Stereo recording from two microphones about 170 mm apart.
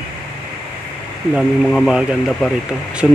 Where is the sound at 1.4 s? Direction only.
Centre (ahead or behind).